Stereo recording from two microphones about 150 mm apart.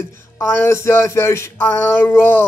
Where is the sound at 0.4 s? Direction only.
15° left (ahead or behind).